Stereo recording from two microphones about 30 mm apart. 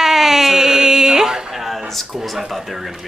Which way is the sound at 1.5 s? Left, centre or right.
Centre.